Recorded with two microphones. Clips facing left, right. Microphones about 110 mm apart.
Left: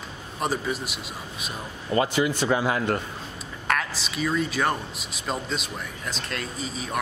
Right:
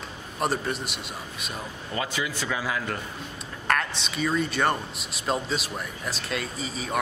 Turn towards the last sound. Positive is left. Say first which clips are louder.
# even
turn(degrees=0)  # may be behind; listen again after turning